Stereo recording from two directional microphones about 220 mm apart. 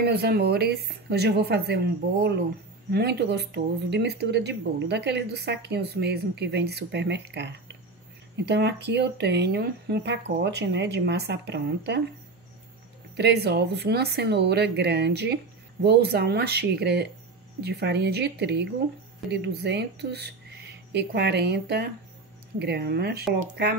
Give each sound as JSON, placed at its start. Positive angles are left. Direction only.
{"t": 0.0, "sound": "speech", "side_deg": -45}
{"t": 2.9, "sound": "speech", "side_deg": -45}
{"t": 13.1, "sound": "speech", "side_deg": -50}